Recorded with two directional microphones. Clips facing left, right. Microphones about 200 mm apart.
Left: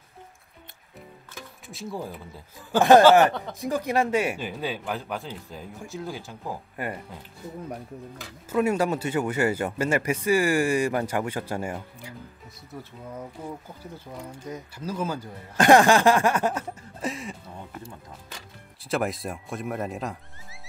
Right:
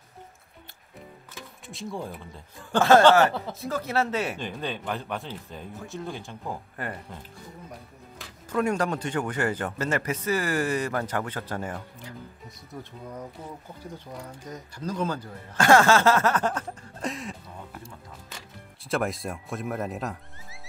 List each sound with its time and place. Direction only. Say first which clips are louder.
1.7 s speech: even; centre (ahead or behind)
2.8 s a man's voice: left 2 dB; 15° left (ahead or behind)
8.5 s a man's voice: left 2 dB; 5° left (ahead or behind)
14.5 s a man's voice: even; 10° left (ahead or behind)